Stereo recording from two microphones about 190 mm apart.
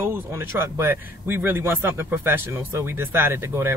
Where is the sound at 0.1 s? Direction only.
10° right (ahead or behind).